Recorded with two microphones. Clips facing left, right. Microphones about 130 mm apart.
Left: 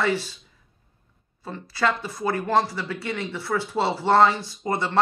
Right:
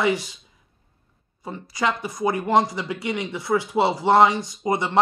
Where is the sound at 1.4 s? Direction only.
15° right (ahead or behind).